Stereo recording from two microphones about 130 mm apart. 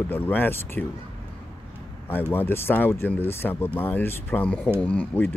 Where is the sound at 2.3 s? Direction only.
15° left (ahead or behind).